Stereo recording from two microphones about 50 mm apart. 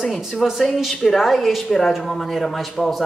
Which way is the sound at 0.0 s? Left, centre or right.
Centre.